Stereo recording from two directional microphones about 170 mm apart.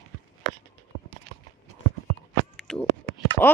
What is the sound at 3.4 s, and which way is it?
Speech, 15° left (ahead or behind).